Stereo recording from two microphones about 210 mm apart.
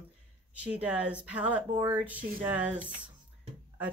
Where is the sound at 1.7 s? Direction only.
15° right (ahead or behind).